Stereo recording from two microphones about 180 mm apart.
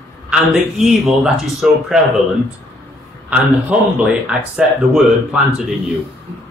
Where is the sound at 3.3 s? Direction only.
5° right (ahead or behind).